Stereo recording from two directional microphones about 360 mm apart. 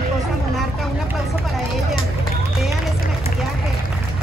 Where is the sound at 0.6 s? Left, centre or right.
Centre.